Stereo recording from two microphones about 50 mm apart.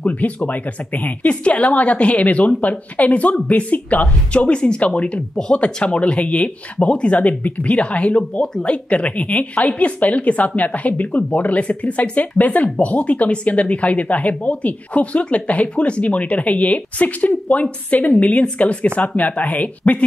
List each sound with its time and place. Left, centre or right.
0.0 s speech: left